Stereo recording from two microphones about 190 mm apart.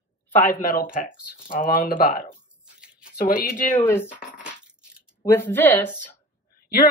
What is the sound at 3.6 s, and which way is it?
Speech, 10° left (ahead or behind).